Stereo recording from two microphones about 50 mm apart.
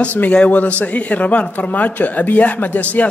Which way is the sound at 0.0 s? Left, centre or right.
Left.